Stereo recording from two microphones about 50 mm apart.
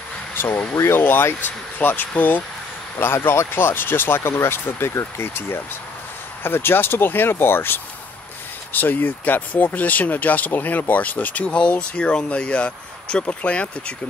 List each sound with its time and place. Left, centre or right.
0.3 s speech: left
3.0 s speech: left
11.4 s speech: left